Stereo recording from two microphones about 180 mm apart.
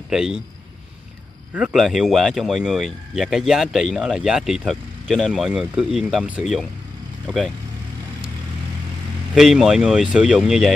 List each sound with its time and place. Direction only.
0.1 s speech: 5° right (ahead or behind)
1.5 s speech: 5° right (ahead or behind)
9.3 s speech: centre (ahead or behind)